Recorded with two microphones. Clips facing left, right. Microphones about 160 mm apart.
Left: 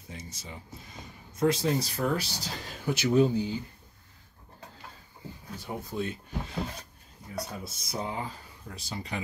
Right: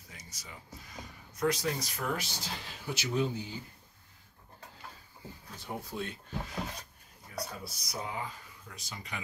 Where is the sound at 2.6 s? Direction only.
50° left (ahead or behind).